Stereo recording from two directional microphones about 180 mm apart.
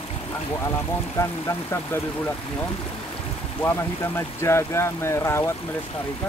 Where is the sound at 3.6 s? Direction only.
15° left (ahead or behind).